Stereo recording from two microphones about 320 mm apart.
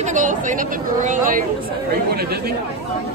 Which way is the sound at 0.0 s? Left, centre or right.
Right.